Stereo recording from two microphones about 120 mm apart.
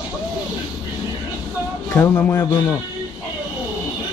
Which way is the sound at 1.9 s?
20° left (ahead or behind).